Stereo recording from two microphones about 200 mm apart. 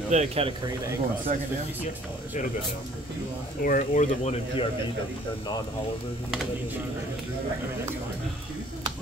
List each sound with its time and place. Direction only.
0.1 s speech: 35° right (ahead or behind)
3.6 s speech: 40° left (ahead or behind)